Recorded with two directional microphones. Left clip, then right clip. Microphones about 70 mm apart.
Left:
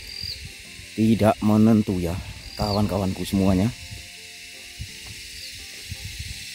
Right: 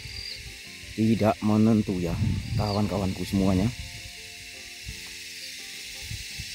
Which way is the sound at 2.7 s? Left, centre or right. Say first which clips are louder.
Left 3 dB; left.